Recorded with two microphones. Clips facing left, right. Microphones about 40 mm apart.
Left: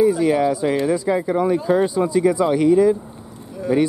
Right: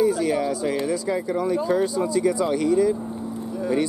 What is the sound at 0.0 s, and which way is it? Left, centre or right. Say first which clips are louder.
Speech: left 5 dB; centre.